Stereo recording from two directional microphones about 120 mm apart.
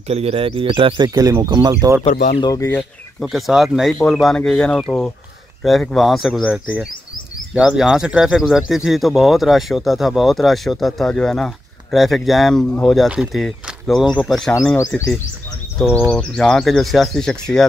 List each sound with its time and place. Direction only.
0.1 s speech: 55° right (ahead or behind); by 2.0 s 30° right (ahead or behind)
2.4 s speech: 30° left (ahead or behind)
3.2 s speech: centre (ahead or behind)